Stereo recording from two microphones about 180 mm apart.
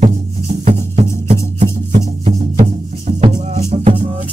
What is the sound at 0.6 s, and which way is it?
Music, 35° right (ahead or behind).